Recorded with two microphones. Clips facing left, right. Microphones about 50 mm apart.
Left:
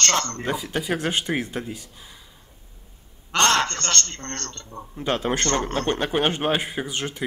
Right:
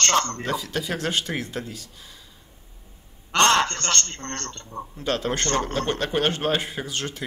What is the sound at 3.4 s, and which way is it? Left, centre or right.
A man's voice, centre.